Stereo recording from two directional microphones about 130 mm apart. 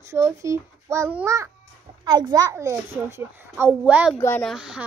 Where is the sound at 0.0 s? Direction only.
20° right (ahead or behind).